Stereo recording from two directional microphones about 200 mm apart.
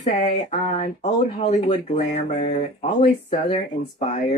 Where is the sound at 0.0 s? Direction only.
35° left (ahead or behind).